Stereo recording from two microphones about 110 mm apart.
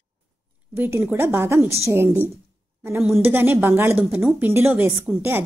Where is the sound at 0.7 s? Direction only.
20° right (ahead or behind).